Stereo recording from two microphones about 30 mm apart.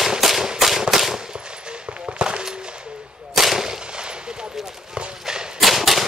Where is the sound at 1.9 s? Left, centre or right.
Right.